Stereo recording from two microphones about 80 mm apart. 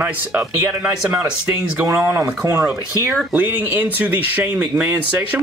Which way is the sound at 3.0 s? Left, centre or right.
Right.